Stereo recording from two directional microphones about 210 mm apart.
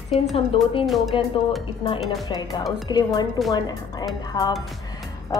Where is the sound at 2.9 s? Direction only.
20° left (ahead or behind).